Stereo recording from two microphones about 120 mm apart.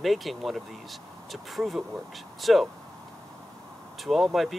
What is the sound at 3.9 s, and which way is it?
Speech, centre (ahead or behind).